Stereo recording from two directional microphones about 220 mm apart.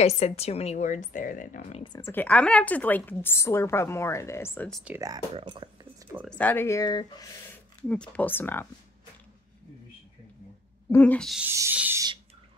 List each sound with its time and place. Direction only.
0.0 s speech: 30° left (ahead or behind); by 4.9 s centre (ahead or behind)
4.9 s speech: 15° right (ahead or behind)
6.2 s speech: 5° left (ahead or behind)
7.9 s speech: 5° left (ahead or behind)
10.9 s speech: 10° left (ahead or behind)
11.5 s a sound: 10° right (ahead or behind)